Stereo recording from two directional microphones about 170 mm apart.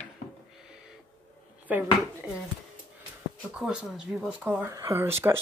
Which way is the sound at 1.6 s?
10° right (ahead or behind).